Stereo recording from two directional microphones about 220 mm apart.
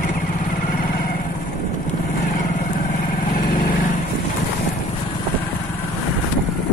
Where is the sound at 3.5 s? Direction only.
40° left (ahead or behind).